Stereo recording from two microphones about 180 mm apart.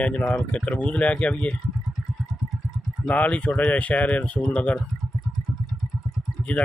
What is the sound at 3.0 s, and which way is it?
Speech, 10° left (ahead or behind).